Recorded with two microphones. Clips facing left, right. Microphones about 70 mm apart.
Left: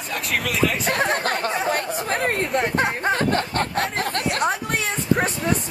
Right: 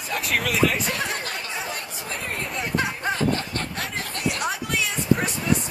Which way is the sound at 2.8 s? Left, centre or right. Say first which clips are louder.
Left 4 dB; left.